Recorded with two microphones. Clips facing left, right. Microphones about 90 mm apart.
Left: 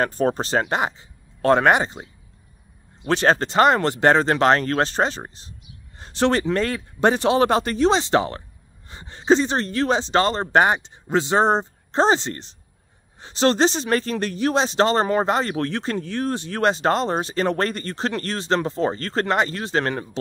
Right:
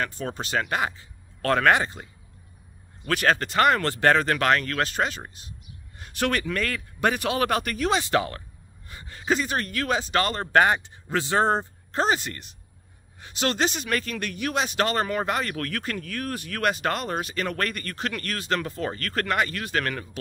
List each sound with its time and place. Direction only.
0.0 s speech: 40° left (ahead or behind); by 2.0 s 20° left (ahead or behind)
3.1 s speech: 25° left (ahead or behind)